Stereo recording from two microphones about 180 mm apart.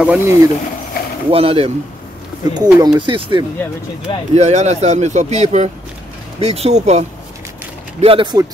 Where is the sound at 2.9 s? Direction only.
25° right (ahead or behind).